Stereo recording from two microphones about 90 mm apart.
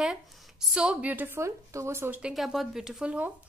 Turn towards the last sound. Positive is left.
turn(degrees=-15)  # may be behind; listen again after turning